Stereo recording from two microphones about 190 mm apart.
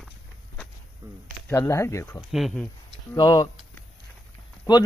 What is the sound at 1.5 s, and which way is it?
Speech, 15° left (ahead or behind).